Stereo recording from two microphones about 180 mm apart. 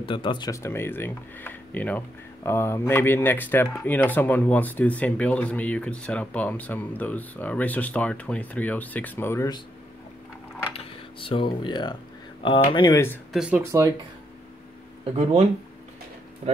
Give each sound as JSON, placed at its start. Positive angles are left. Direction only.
{"t": 0.0, "sound": "speech", "side_deg": 25}
{"t": 10.8, "sound": "speech", "side_deg": 30}
{"t": 13.3, "sound": "speech", "side_deg": -5}
{"t": 13.6, "sound": "speech", "side_deg": -15}
{"t": 16.4, "sound": "speech", "side_deg": -40}